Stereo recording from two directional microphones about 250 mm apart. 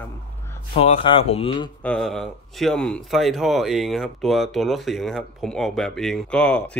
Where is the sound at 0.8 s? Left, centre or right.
Left.